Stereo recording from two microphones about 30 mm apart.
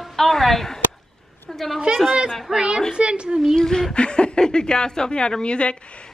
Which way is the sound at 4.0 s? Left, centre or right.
Left.